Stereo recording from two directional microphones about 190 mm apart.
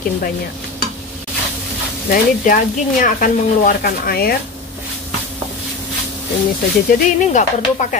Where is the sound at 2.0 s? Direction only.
45° left (ahead or behind).